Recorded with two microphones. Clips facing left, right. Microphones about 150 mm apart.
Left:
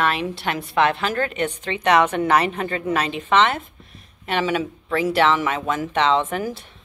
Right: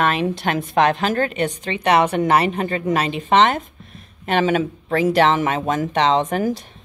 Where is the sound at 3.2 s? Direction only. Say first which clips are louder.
Right 3 dB; 40° right (ahead or behind).